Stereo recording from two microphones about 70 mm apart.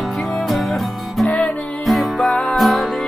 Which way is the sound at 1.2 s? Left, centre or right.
Centre.